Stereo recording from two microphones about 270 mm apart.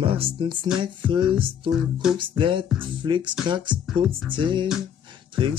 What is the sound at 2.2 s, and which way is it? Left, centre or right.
Speech, centre.